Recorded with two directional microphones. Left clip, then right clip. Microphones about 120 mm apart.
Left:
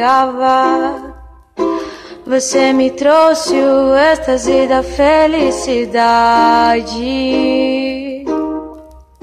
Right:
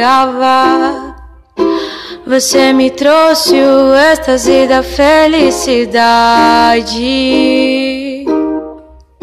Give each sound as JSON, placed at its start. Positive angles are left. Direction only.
{"t": 0.0, "sound": "music", "side_deg": -20}